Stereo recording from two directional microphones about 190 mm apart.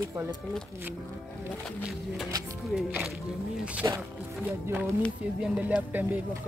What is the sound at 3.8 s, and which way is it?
Speech, 20° right (ahead or behind).